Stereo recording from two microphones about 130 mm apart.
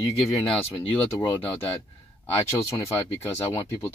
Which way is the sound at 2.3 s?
20° left (ahead or behind).